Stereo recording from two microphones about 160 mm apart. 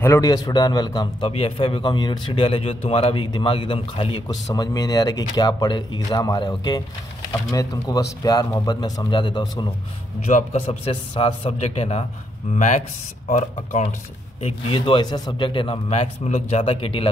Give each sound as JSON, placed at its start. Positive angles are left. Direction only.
{"t": 0.0, "sound": "a man's voice", "side_deg": 20}
{"t": 4.5, "sound": "speech", "side_deg": 25}
{"t": 10.2, "sound": "a man's voice", "side_deg": 45}
{"t": 14.4, "sound": "a man's voice", "side_deg": 35}